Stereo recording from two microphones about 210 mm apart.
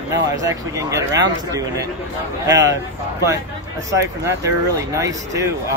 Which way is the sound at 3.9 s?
15° right (ahead or behind).